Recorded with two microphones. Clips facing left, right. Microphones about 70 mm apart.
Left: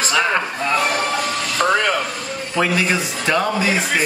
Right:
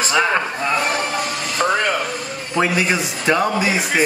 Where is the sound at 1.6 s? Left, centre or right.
Centre.